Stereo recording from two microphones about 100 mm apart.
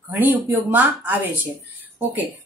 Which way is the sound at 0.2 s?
20° right (ahead or behind).